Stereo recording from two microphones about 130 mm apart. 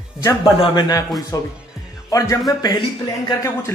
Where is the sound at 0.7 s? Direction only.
30° left (ahead or behind).